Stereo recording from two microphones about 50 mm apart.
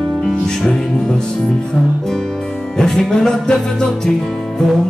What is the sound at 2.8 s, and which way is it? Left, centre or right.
Music, centre.